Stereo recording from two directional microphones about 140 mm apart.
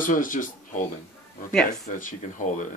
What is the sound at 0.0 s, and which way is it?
Speech, 70° left (ahead or behind).